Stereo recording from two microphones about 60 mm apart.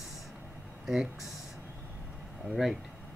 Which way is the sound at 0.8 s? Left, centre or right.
Centre.